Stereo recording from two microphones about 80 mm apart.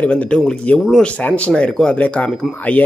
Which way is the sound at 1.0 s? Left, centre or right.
Centre.